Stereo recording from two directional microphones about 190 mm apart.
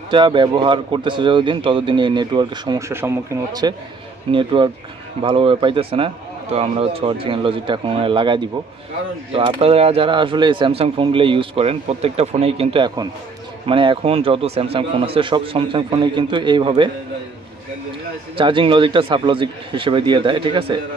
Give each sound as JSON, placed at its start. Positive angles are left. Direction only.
{"t": 0.1, "sound": "speech", "side_deg": -25}
{"t": 18.3, "sound": "speech", "side_deg": -25}